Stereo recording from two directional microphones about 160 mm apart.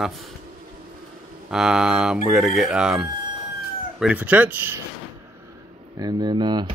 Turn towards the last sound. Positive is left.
turn(degrees=-25)  # may be behind; listen again after turning